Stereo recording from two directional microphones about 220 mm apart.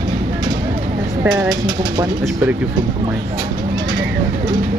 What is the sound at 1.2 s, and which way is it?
Speech, 5° right (ahead or behind).